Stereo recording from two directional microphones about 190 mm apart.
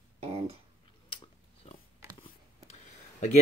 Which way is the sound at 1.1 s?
25° left (ahead or behind).